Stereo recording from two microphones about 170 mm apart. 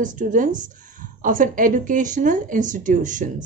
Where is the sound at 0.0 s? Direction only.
50° right (ahead or behind).